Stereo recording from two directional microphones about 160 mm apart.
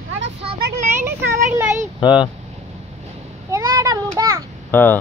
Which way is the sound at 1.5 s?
15° right (ahead or behind).